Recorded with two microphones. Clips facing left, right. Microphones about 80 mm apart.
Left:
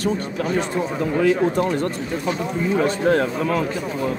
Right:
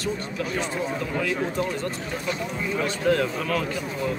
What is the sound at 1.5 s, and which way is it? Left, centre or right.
Speech, left.